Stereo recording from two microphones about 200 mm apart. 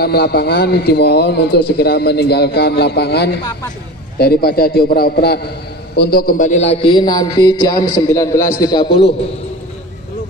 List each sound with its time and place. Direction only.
0.0 s a man's voice: 50° left (ahead or behind); by 8.9 s 20° left (ahead or behind)